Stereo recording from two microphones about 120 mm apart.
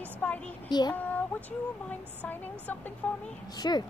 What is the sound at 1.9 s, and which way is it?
A woman's voice, 15° left (ahead or behind).